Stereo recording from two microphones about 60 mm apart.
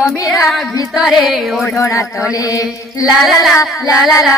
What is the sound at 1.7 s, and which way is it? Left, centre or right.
Mantra, left.